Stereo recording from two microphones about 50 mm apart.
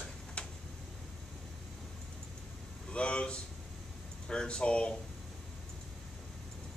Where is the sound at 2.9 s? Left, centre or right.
Left.